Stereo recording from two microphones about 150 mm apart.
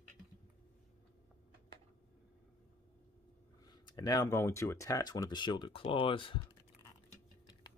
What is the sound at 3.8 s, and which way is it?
Speech, 30° left (ahead or behind).